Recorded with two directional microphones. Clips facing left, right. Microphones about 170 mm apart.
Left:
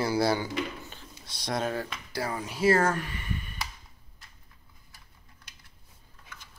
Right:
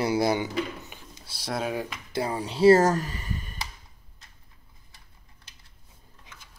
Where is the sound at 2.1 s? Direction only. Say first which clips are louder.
Right 4 dB; 25° right (ahead or behind).